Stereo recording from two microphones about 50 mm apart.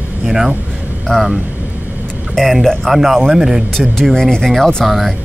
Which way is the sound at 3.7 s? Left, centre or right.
Centre.